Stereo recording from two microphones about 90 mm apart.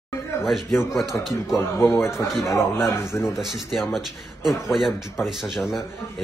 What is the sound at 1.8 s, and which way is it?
A man's voice, 30° left (ahead or behind).